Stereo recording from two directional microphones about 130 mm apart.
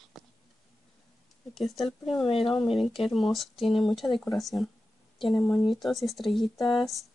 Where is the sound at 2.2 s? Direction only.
45° left (ahead or behind).